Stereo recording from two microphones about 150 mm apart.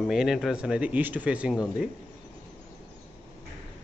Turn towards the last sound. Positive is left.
turn(degrees=-5)  # may be behind; listen again after turning